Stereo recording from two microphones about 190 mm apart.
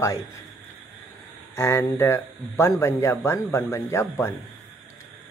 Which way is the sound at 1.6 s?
10° left (ahead or behind).